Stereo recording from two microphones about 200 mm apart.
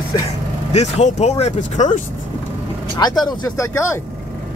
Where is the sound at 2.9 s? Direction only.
20° left (ahead or behind).